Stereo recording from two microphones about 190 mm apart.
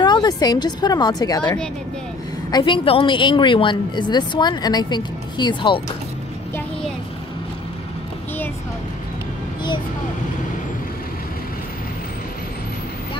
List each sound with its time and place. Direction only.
0.0 s a woman's voice: 20° left (ahead or behind)
1.4 s a woman's voice: 5° left (ahead or behind)
2.5 s a woman's voice: 25° left (ahead or behind)